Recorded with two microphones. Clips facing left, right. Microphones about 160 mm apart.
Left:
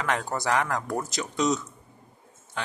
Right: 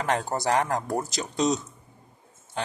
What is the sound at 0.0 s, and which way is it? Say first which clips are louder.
Speech: right 2 dB; 30° right (ahead or behind).